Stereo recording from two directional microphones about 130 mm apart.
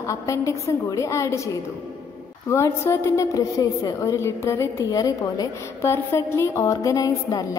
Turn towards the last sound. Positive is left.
turn(degrees=25)  # may be behind; listen again after turning